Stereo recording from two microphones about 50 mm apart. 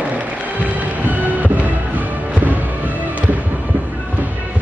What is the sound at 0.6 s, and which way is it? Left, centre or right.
Music, right.